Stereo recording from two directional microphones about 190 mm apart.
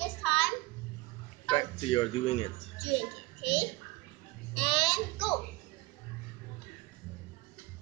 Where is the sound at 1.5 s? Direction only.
25° left (ahead or behind).